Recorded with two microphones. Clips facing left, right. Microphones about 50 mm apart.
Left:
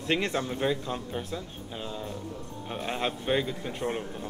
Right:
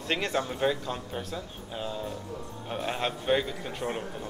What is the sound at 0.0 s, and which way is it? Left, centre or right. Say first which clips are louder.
Speech: left 2 dB; centre.